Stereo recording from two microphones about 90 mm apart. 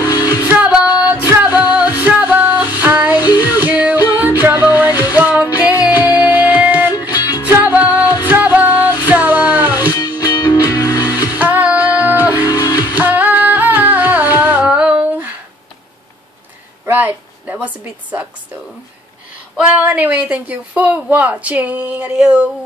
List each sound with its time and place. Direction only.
0.0 s music: 45° left (ahead or behind)
0.5 s music: 15° right (ahead or behind)
2.0 s female singing: 15° right (ahead or behind)
3.2 s child singing: 50° left (ahead or behind)
3.5 s yodeling: 15° right (ahead or behind)
4.4 s music: 20° right (ahead or behind)
7.1 s music: 50° left (ahead or behind)
7.4 s music: 20° right (ahead or behind)
9.8 s music: 50° left (ahead or behind)
11.3 s music: 20° right (ahead or behind)
12.4 s music: 45° left (ahead or behind)
12.9 s music: 20° right (ahead or behind)
16.8 s a woman's voice: 20° right (ahead or behind)
19.7 s a woman's voice: 15° right (ahead or behind)